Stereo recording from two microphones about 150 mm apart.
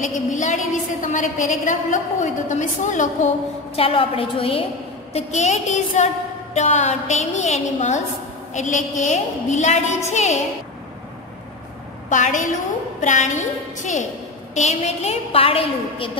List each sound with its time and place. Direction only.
0.0 s a woman's voice: 55° left (ahead or behind)
3.7 s a woman's voice: 40° left (ahead or behind)
12.1 s a woman's voice: 55° left (ahead or behind); by 16.1 s 40° left (ahead or behind)